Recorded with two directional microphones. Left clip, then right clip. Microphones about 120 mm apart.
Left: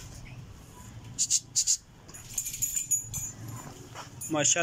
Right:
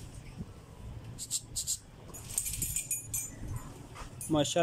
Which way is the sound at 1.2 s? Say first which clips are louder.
Left 11 dB; 30° right (ahead or behind).